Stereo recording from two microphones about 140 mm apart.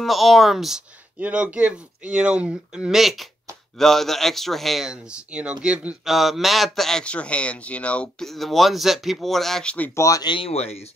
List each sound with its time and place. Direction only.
0.0 s a man's voice: centre (ahead or behind)
9.9 s speech: 25° left (ahead or behind); by 10.9 s 45° left (ahead or behind)